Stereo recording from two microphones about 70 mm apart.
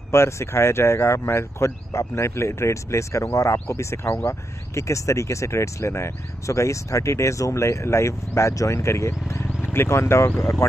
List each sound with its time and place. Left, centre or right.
0.1 s speech: left